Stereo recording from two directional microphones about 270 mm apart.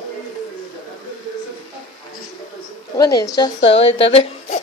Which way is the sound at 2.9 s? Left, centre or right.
Centre.